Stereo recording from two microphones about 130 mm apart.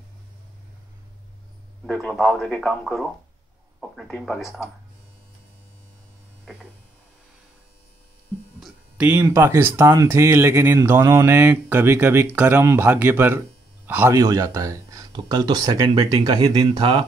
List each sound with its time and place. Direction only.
2.1 s speech: centre (ahead or behind)
8.5 s a sound: centre (ahead or behind)
9.0 s a man's voice: 15° right (ahead or behind)
16.4 s speech: 40° right (ahead or behind)